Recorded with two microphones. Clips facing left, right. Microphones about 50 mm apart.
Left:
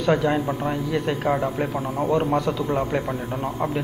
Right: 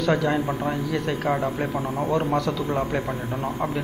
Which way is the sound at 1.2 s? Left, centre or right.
Centre.